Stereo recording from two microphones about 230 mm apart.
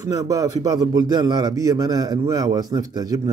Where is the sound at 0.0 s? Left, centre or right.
Centre.